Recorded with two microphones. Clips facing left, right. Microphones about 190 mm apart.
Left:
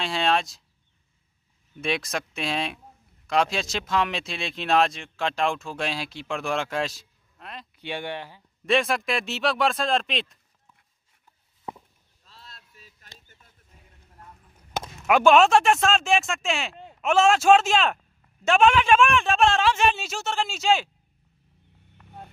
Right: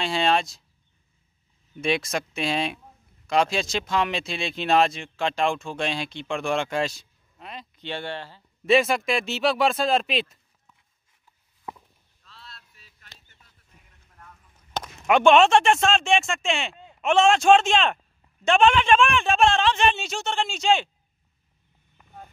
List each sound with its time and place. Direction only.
0.0 s speech: centre (ahead or behind)
1.8 s speech: centre (ahead or behind)
7.8 s speech: 15° left (ahead or behind)
8.6 s speech: centre (ahead or behind)
12.3 s a sound: 45° left (ahead or behind)
15.0 s speech: 5° left (ahead or behind)